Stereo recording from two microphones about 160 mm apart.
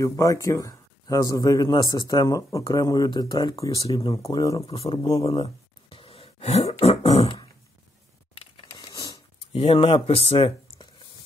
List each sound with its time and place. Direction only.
0.0 s speech: 20° left (ahead or behind)
4.6 s speech: 35° left (ahead or behind)
5.1 s throat clearing: 35° left (ahead or behind)
8.6 s a sound: 25° left (ahead or behind)